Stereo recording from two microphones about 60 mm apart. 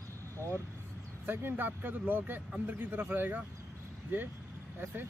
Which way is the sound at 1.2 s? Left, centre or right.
Right.